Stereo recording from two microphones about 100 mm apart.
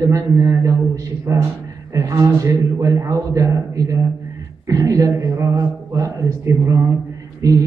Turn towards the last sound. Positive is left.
turn(degrees=-35)  # may be behind; listen again after turning